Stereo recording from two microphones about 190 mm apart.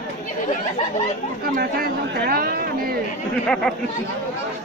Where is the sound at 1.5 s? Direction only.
55° right (ahead or behind).